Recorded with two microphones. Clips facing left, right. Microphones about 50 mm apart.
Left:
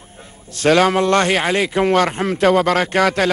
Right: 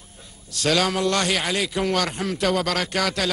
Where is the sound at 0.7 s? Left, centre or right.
Left.